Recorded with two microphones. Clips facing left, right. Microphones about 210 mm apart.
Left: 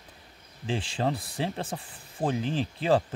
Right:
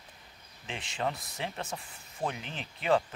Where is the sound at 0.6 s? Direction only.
30° left (ahead or behind).